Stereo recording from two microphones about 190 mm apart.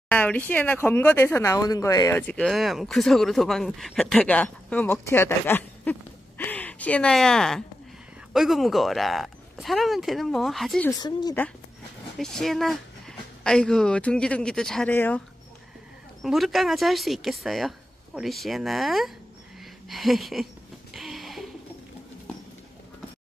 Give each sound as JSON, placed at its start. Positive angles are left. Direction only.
{"t": 0.1, "sound": "speech", "side_deg": 5}
{"t": 10.9, "sound": "speech", "side_deg": 20}
{"t": 12.2, "sound": "speech", "side_deg": 0}
{"t": 20.9, "sound": "a sound", "side_deg": 0}